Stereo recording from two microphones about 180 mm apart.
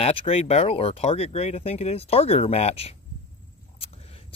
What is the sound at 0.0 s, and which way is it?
Speech, 30° left (ahead or behind).